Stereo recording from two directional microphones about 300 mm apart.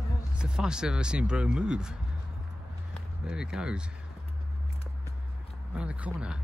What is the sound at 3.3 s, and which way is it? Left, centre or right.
Speech, centre.